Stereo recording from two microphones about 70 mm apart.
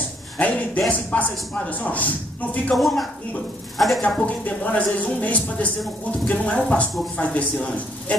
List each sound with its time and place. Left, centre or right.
0.4 s speech: centre
2.7 s a woman's voice: centre
4.5 s speech: left